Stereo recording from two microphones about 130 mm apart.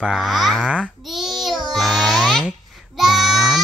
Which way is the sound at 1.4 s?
Centre (ahead or behind).